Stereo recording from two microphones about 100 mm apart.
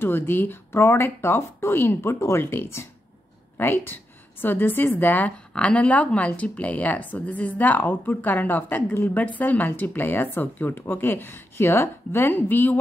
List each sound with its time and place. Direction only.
0.0 s a woman's voice: 20° left (ahead or behind)